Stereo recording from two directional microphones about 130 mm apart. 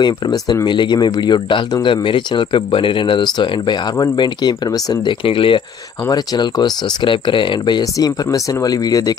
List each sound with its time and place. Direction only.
0.0 s speech: 35° left (ahead or behind)
5.2 s speech: 45° left (ahead or behind)
6.0 s speech: 30° left (ahead or behind)